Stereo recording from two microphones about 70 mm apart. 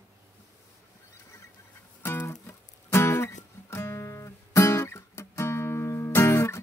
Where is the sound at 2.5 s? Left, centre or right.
Left.